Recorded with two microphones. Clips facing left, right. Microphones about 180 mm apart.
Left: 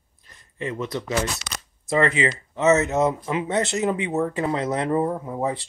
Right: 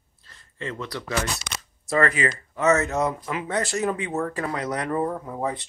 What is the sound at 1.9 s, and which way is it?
Speech, 20° left (ahead or behind).